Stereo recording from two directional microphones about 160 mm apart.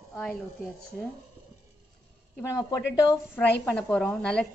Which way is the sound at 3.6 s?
5° left (ahead or behind).